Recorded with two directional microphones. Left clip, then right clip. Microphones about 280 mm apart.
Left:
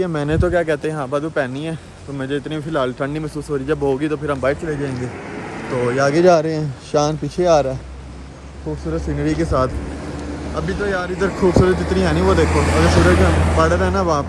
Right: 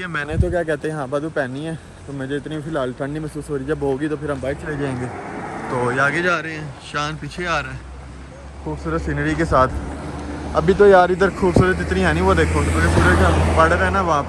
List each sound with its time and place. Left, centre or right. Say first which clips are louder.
0.0 s speech: left 4 dB; centre
0.4 s speech: left 4 dB; centre
8.9 s speech: even; centre
10.7 s speech: right 11 dB; centre
13.3 s speech: even; right
13.6 s speech: right 1 dB; centre